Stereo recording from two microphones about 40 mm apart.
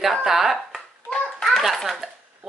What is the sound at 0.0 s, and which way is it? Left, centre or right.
A woman's voice, centre.